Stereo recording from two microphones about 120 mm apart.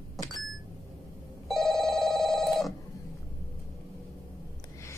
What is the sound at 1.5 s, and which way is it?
Telephone bell ringing, centre (ahead or behind).